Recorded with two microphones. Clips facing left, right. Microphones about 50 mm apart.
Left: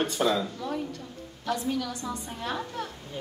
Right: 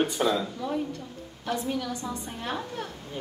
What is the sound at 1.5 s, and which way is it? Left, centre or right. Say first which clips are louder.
Speech: even; centre.